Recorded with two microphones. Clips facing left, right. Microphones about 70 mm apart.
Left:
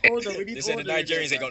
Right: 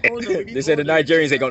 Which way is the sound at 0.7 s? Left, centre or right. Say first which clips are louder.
Right 12 dB; right.